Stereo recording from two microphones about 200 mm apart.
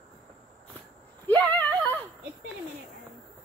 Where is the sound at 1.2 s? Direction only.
10° left (ahead or behind).